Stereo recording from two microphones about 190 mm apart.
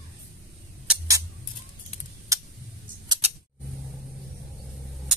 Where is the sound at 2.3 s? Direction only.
15° right (ahead or behind).